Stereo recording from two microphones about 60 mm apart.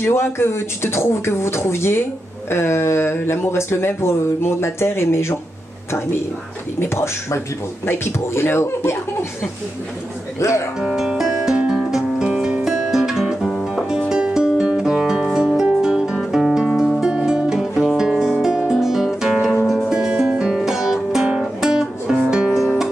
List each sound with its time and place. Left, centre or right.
0.0 s speech: left
6.8 s speech: left
10.8 s music: centre
19.9 s music: centre